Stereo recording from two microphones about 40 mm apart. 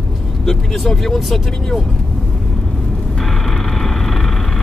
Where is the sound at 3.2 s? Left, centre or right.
Centre.